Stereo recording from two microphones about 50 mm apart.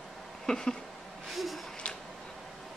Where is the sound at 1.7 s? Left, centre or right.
Left.